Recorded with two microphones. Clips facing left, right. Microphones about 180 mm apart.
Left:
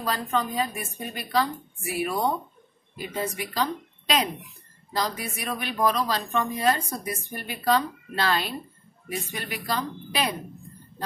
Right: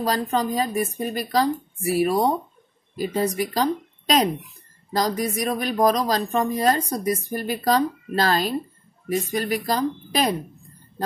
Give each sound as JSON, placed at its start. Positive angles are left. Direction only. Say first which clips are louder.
{"t": 0.0, "sound": "speech", "louder": "right 4 dB", "side_deg": -35}